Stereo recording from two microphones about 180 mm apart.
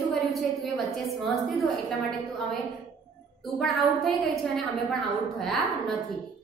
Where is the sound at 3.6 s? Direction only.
Centre (ahead or behind).